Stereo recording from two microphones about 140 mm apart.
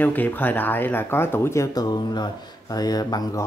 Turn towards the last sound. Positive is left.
turn(degrees=25)  # may be behind; listen again after turning